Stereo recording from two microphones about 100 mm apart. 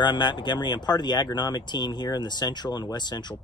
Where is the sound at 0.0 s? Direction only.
45° left (ahead or behind).